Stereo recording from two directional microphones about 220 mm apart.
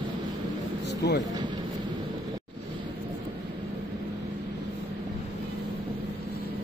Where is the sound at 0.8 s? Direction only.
50° left (ahead or behind).